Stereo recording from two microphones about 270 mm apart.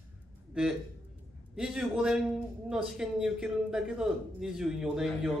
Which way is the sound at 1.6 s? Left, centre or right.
Centre.